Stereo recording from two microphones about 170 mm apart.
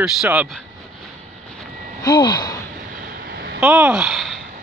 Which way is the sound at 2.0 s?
25° left (ahead or behind).